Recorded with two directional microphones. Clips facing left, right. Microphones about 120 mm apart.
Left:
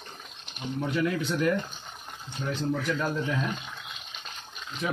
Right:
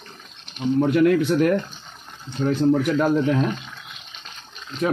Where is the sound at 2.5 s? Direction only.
65° right (ahead or behind).